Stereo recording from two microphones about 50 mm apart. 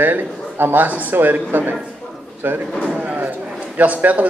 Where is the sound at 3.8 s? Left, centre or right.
Right.